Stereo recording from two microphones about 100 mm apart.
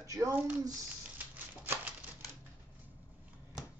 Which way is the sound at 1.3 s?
20° right (ahead or behind).